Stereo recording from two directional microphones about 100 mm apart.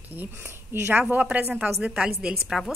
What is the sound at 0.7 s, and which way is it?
A woman's voice, 20° right (ahead or behind).